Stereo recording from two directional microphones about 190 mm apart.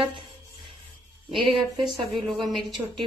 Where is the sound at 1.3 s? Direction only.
Centre (ahead or behind).